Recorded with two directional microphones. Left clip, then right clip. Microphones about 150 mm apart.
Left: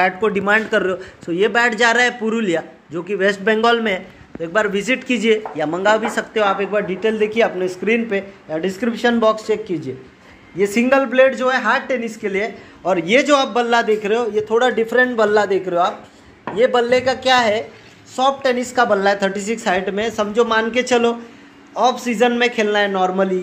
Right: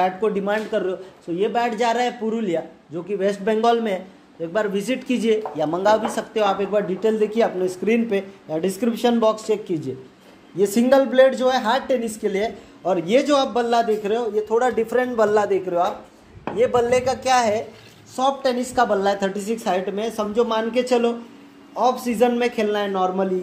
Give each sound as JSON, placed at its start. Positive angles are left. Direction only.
{"t": 0.2, "sound": "a man's voice", "side_deg": 5}
{"t": 8.2, "sound": "speech", "side_deg": -25}
{"t": 9.1, "sound": "speech", "side_deg": -10}
{"t": 12.8, "sound": "a man's voice", "side_deg": 0}